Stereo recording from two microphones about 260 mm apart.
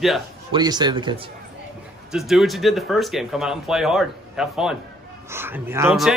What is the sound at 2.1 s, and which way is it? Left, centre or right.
A man's voice, centre.